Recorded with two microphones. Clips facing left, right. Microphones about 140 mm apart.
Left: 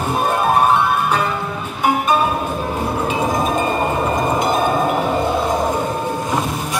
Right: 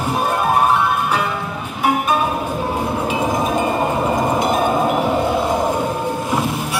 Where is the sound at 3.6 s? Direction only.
15° right (ahead or behind).